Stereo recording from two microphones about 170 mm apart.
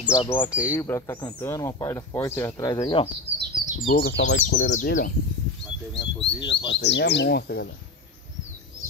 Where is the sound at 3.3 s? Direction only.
60° right (ahead or behind).